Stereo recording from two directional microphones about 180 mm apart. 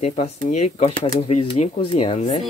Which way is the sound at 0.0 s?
35° left (ahead or behind).